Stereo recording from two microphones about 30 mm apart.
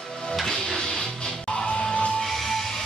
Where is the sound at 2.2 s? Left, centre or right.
Centre.